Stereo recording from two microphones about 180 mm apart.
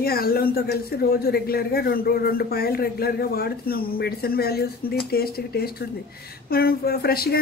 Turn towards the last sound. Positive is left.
turn(degrees=60)  # may be behind; listen again after turning